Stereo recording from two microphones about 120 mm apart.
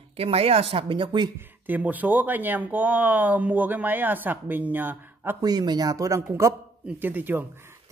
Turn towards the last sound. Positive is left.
turn(degrees=-15)  # may be behind; listen again after turning